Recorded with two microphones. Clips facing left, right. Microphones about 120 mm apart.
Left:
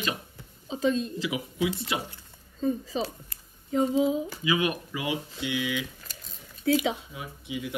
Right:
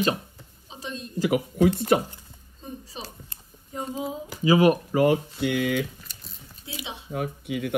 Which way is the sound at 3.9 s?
40° right (ahead or behind).